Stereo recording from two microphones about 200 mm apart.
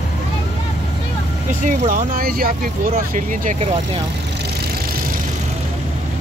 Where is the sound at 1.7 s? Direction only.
40° right (ahead or behind).